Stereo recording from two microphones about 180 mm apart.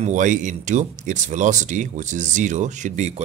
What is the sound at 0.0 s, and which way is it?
Speech, 45° right (ahead or behind).